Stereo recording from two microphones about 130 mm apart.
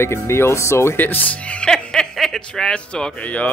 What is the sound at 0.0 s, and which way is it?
Speech, 20° left (ahead or behind).